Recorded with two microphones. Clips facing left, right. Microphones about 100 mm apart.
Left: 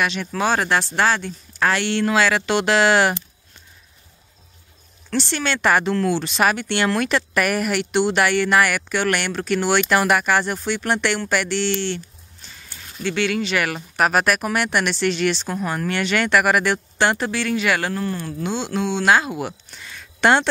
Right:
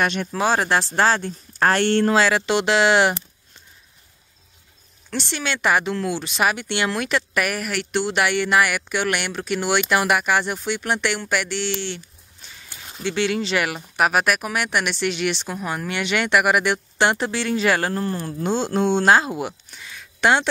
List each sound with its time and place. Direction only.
0.0 s speech: 45° right (ahead or behind)
0.3 s speech: 25° right (ahead or behind); by 2.1 s 50° right (ahead or behind)
2.1 s speech: 25° right (ahead or behind)
5.1 s speech: 10° right (ahead or behind); by 8.1 s 5° left (ahead or behind)
8.1 s speech: 10° right (ahead or behind)
12.9 s speech: 25° right (ahead or behind)
13.7 s speech: 10° right (ahead or behind); by 19.0 s 40° right (ahead or behind)
19.0 s speech: 30° right (ahead or behind)
19.7 s a sound: 5° right (ahead or behind)